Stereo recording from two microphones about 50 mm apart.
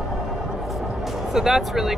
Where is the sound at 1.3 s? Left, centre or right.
Centre.